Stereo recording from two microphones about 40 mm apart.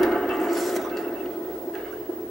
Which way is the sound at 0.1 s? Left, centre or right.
Centre.